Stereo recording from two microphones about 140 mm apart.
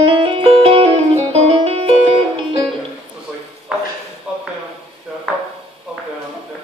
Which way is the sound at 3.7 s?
5° right (ahead or behind).